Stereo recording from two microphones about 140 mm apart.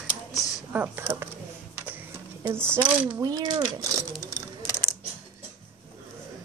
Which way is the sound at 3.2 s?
30° right (ahead or behind).